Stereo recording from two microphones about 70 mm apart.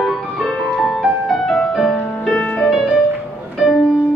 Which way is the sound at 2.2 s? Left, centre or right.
Centre.